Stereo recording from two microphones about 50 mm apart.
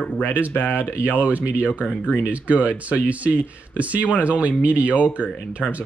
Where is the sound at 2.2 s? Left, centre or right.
Right.